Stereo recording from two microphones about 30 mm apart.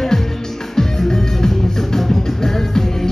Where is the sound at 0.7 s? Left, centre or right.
Centre.